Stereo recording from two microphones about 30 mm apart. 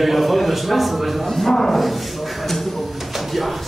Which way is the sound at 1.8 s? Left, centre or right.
Centre.